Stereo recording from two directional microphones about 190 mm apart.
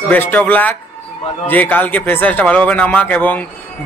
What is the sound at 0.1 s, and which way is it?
A man's voice, 10° left (ahead or behind).